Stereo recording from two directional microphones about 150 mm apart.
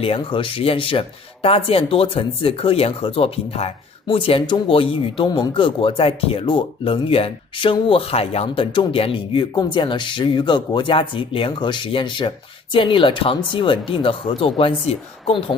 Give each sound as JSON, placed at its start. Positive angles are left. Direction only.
{"t": 0.0, "sound": "speech", "side_deg": 35}